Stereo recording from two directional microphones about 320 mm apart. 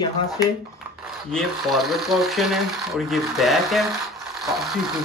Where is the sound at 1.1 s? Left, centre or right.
Centre.